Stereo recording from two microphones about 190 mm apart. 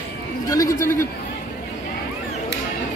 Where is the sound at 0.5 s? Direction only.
15° left (ahead or behind).